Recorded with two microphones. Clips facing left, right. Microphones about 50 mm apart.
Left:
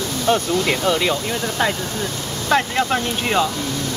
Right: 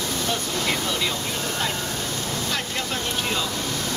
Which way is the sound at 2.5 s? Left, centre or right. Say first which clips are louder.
Left 10 dB; left.